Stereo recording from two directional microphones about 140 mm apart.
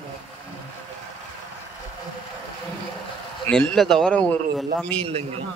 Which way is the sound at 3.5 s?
5° left (ahead or behind).